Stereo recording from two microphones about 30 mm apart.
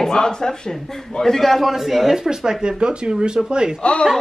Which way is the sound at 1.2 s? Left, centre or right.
Centre.